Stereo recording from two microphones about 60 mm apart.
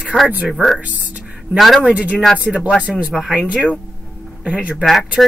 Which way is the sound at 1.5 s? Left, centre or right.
Centre.